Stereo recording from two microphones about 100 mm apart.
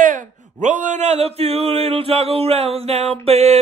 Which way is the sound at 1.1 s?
90° right.